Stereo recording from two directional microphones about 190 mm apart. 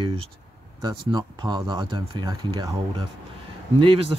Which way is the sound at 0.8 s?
20° right (ahead or behind).